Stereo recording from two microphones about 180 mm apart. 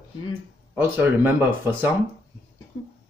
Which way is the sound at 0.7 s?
10° right (ahead or behind).